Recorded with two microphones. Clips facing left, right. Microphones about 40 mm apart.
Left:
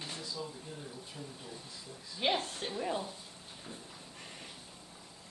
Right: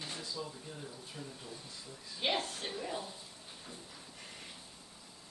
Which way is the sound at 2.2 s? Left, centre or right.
Centre.